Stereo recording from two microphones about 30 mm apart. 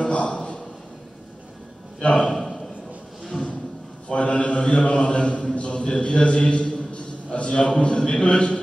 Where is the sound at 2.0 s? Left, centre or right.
Left.